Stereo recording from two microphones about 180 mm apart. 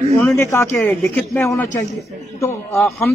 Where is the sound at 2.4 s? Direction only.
15° left (ahead or behind).